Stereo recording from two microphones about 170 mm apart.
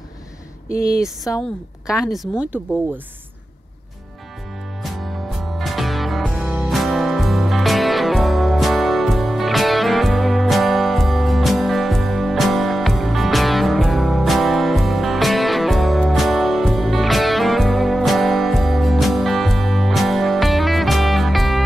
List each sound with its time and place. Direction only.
0.7 s speech: 60° left (ahead or behind)
1.3 s a woman's voice: 20° left (ahead or behind)
1.9 s a woman's voice: centre (ahead or behind)
4.8 s music: centre (ahead or behind)